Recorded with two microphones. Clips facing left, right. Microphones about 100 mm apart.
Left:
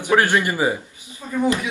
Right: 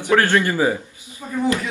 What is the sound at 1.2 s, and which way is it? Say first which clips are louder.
Speech: even; 15° right (ahead or behind).